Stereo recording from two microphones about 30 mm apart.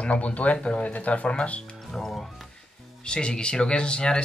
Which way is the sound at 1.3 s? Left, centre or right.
Left.